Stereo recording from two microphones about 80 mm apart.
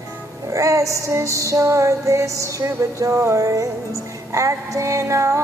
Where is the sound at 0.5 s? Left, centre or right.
Right.